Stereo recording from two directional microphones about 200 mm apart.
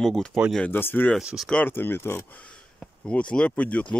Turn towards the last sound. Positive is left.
turn(degrees=5)  # may be behind; listen again after turning